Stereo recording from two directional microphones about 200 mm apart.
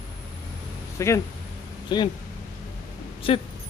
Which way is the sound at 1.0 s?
15° left (ahead or behind).